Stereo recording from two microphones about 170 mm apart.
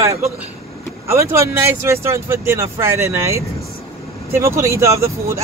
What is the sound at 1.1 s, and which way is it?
Speech, 15° right (ahead or behind).